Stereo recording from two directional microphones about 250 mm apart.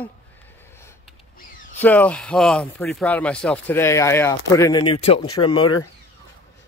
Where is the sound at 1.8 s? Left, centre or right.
Centre.